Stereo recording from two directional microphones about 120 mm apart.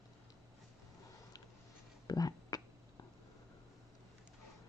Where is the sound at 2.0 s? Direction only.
30° left (ahead or behind).